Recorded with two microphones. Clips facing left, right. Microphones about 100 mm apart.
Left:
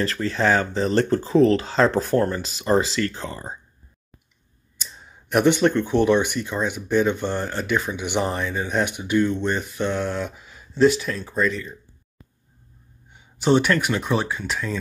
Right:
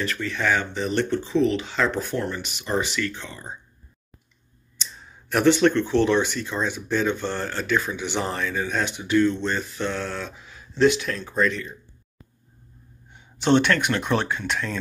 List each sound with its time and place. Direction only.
0.0 s speech: 30° left (ahead or behind)
4.7 s speech: 10° left (ahead or behind)
13.1 s speech: 5° left (ahead or behind)